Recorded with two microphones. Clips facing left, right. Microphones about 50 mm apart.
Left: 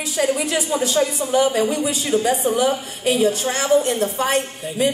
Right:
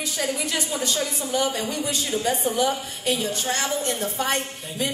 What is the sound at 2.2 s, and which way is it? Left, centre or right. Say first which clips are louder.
A woman's voice: left 2 dB; centre.